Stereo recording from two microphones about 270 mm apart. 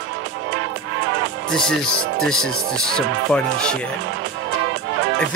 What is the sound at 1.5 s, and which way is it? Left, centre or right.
Speech, centre.